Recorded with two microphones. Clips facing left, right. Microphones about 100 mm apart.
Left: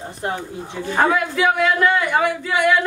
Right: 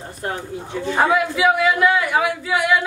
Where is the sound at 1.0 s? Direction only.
5° right (ahead or behind).